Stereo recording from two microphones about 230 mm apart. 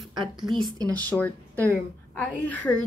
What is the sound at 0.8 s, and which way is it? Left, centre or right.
A woman's voice, centre.